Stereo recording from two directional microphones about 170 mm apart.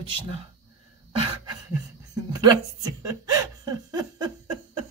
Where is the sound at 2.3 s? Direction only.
25° right (ahead or behind).